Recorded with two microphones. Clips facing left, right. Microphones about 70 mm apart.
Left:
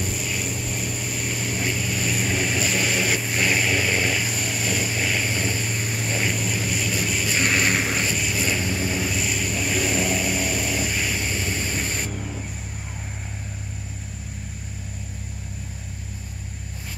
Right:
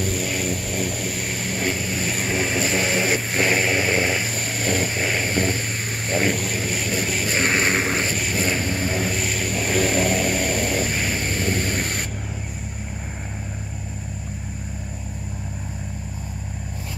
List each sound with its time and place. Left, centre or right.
0.0 s vehicle: right